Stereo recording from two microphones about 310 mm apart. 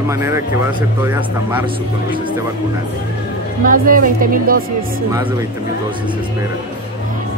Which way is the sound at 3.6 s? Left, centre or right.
Right.